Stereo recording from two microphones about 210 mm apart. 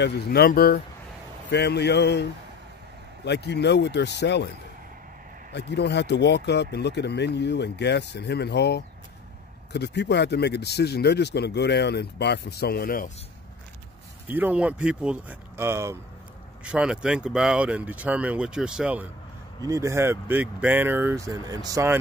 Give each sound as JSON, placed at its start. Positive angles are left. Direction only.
{"t": 0.0, "sound": "speech", "side_deg": 50}
{"t": 3.3, "sound": "speech", "side_deg": 55}
{"t": 5.5, "sound": "speech", "side_deg": 55}
{"t": 14.2, "sound": "speech", "side_deg": -10}